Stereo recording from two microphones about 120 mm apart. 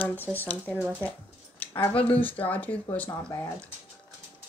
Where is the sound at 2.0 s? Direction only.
15° left (ahead or behind).